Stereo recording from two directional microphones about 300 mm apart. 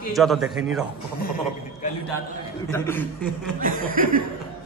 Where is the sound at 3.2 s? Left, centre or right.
Right.